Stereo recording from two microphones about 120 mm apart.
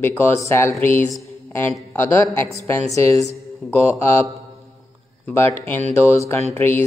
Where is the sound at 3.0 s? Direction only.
65° right (ahead or behind).